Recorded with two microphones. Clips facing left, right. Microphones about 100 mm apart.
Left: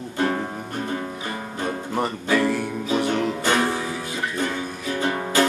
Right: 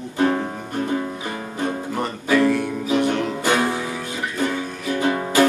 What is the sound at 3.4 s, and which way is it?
Music, 15° right (ahead or behind).